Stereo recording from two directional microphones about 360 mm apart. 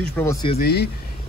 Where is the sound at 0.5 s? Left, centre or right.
Left.